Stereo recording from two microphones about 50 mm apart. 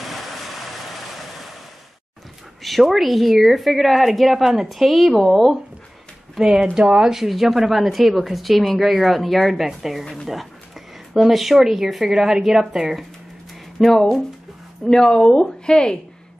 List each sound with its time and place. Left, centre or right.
0.0 s vehicle: centre
2.6 s speech: centre
13.7 s speech: centre
14.9 s speech: centre